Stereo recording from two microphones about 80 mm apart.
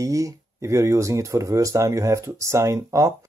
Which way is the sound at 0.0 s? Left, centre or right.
Right.